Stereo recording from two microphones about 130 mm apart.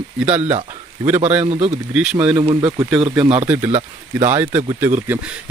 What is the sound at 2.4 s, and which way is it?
Speech, 40° right (ahead or behind).